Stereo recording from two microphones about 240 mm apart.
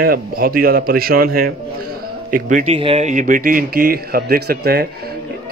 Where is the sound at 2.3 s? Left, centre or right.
Right.